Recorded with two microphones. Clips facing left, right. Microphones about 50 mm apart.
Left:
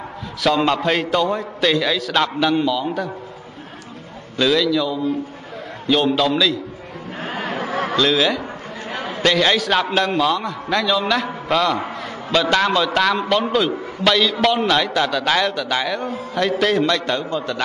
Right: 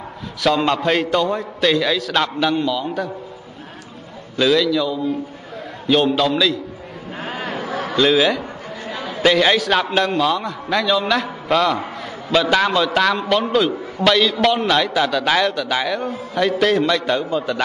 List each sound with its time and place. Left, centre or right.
0.4 s a man's voice: centre
4.4 s a man's voice: centre
7.2 s a sound: left
7.9 s a man's voice: centre
8.8 s chatter: left
9.2 s a man's voice: centre